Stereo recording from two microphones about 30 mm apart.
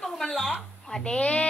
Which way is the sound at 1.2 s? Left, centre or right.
Left.